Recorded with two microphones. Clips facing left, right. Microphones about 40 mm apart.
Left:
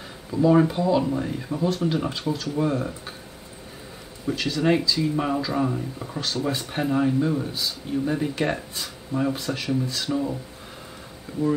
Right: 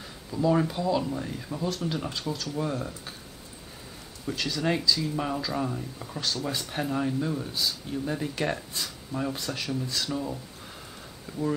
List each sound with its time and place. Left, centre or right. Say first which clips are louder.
0.3 s speech: left 6 dB; centre
4.3 s speech: left 6 dB; centre
11.3 s a sound: left 5 dB; centre